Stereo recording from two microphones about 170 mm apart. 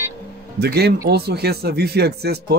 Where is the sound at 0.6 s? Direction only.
70° right (ahead or behind).